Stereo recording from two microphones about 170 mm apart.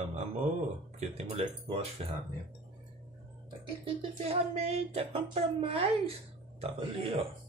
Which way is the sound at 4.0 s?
35° right (ahead or behind).